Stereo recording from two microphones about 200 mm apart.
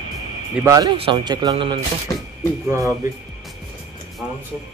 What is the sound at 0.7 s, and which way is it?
Speech, 20° right (ahead or behind).